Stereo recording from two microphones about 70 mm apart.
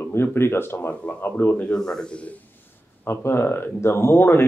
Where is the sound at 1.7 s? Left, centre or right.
Centre.